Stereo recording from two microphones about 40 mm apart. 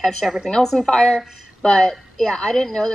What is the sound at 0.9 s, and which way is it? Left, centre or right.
Speech, left.